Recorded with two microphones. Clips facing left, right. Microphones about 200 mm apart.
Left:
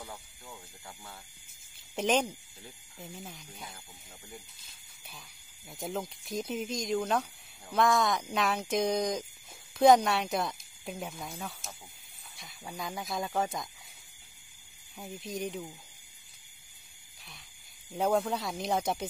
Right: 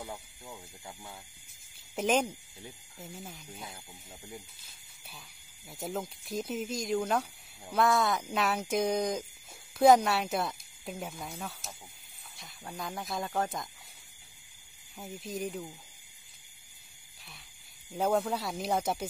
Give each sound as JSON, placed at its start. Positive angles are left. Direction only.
{"t": 0.0, "sound": "speech", "side_deg": -15}
{"t": 2.0, "sound": "speech", "side_deg": -5}
{"t": 5.7, "sound": "speech", "side_deg": -5}
{"t": 15.0, "sound": "speech", "side_deg": -5}
{"t": 17.9, "sound": "speech", "side_deg": 0}